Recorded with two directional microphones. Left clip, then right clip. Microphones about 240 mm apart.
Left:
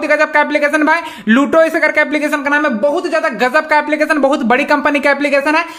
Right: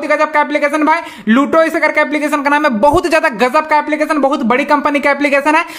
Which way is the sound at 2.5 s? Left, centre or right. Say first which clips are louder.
Right 4 dB; centre.